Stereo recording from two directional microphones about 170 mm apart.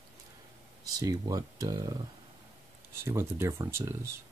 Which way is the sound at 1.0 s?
20° right (ahead or behind).